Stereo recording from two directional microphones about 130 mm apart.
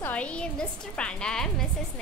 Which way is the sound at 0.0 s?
10° left (ahead or behind).